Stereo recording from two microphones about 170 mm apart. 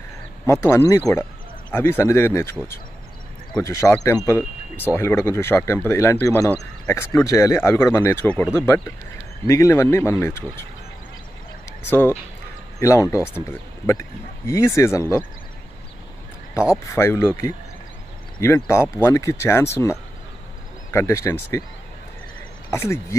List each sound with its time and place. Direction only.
0.5 s speech: 15° left (ahead or behind)
3.6 s speech: 15° left (ahead or behind)
11.8 s speech: 15° left (ahead or behind)
16.8 s speech: 15° left (ahead or behind)
22.7 s speech: 15° left (ahead or behind)